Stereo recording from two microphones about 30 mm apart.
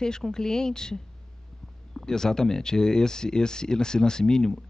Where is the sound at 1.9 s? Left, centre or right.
Centre.